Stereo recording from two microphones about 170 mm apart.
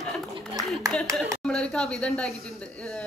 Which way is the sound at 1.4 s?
5° left (ahead or behind).